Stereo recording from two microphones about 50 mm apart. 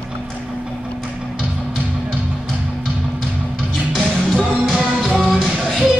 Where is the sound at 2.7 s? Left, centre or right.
Centre.